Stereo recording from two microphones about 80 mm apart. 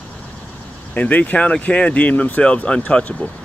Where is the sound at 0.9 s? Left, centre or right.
Centre.